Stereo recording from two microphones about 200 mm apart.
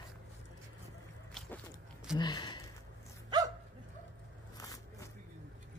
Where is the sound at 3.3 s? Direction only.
20° right (ahead or behind).